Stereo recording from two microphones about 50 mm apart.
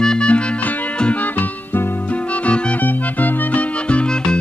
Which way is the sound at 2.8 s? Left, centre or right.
Left.